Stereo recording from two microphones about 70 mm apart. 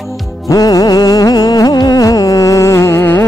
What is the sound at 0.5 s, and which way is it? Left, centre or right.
Music, left.